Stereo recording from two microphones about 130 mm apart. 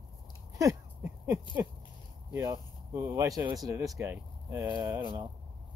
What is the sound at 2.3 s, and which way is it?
Speech, 25° right (ahead or behind).